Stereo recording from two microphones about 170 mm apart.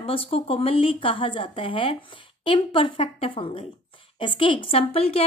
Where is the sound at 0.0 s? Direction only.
35° left (ahead or behind).